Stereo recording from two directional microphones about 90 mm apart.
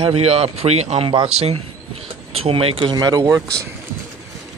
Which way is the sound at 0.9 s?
80° right.